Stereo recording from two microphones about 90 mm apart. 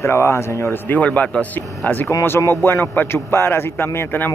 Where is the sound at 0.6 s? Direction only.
20° left (ahead or behind).